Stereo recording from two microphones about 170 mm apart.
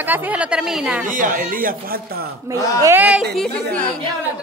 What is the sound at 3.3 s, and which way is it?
Speech, 5° left (ahead or behind).